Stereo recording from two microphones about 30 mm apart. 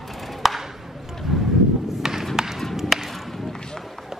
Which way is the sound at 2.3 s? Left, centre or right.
Centre.